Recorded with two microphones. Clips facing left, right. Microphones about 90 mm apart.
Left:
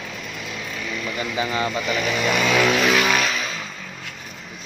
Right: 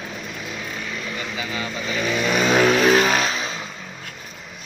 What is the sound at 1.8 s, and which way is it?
Vehicle, 30° right (ahead or behind).